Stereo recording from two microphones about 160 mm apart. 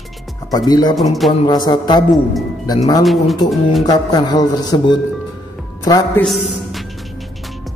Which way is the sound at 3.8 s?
25° left (ahead or behind).